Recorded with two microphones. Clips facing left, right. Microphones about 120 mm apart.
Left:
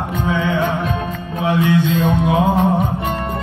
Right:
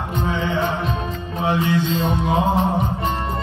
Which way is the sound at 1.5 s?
55° left (ahead or behind).